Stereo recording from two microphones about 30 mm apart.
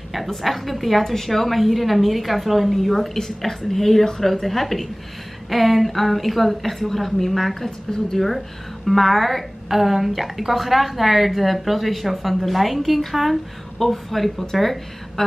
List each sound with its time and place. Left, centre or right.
0.4 s a woman's voice: centre
3.2 s a woman's voice: centre